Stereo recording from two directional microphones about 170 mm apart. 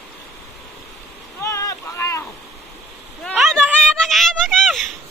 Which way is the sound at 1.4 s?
15° left (ahead or behind).